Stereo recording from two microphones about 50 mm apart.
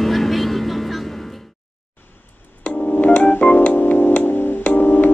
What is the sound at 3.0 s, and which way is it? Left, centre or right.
Music, left.